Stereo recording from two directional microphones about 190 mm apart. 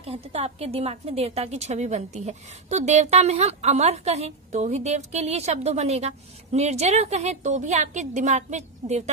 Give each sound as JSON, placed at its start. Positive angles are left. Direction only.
{"t": 0.0, "sound": "a woman's voice", "side_deg": -30}